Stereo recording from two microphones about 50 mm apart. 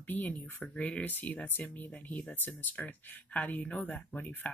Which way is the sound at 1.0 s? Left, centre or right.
Left.